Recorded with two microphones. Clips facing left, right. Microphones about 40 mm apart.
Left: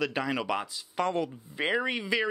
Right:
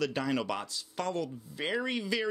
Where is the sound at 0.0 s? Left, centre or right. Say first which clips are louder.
Left 1 dB; centre.